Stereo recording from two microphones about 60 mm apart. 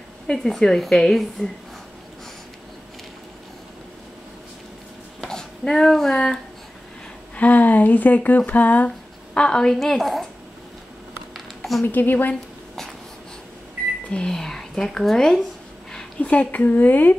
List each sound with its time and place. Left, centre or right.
0.3 s speech: centre
5.2 s speech: centre
7.3 s speech: left; by 9.8 s centre
9.8 s a woman's voice: centre
11.3 s a sound: centre
11.8 s a woman's voice: left
14.1 s speech: centre
16.2 s speech: left